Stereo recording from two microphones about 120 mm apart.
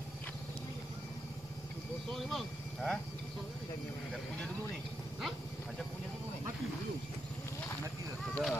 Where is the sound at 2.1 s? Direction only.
Centre (ahead or behind).